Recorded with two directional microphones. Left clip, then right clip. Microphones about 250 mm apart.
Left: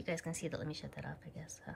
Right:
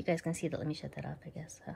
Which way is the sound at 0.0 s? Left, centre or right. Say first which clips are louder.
Right 6 dB; centre.